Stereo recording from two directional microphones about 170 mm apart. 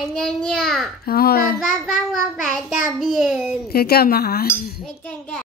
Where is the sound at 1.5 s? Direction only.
Centre (ahead or behind).